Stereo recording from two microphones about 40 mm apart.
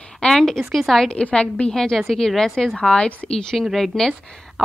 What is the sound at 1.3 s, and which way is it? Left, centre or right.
Speech, left.